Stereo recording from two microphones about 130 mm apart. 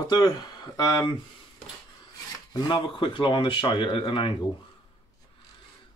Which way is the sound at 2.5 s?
40° left (ahead or behind).